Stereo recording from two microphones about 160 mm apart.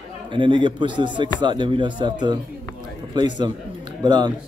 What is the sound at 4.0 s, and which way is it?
Speech, 25° right (ahead or behind).